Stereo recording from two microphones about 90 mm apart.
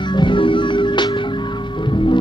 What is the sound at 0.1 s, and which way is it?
Music, 60° left (ahead or behind).